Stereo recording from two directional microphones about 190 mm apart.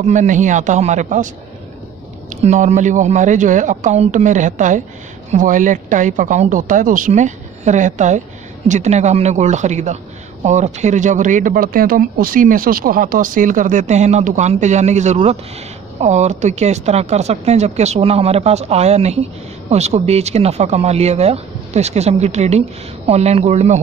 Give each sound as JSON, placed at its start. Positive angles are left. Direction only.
{"t": 0.0, "sound": "speech", "side_deg": -40}
{"t": 2.4, "sound": "speech", "side_deg": -40}